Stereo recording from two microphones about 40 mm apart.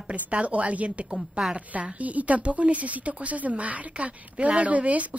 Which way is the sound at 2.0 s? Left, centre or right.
Right.